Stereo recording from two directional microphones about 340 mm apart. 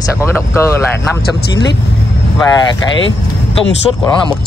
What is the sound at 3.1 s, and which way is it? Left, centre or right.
Speech, centre.